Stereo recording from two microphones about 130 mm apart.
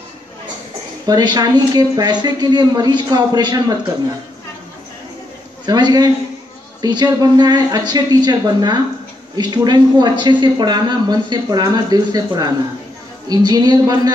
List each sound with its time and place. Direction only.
1.0 s speech: 30° right (ahead or behind)
5.7 s speech: 30° right (ahead or behind)